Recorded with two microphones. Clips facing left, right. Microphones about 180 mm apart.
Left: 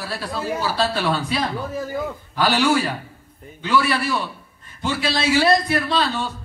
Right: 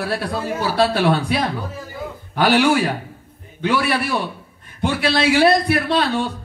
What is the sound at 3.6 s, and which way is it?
Speech, 60° right (ahead or behind).